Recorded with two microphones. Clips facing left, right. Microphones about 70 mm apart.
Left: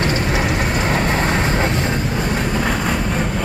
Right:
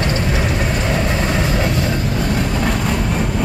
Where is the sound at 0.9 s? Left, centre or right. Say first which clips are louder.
Left 1 dB; left.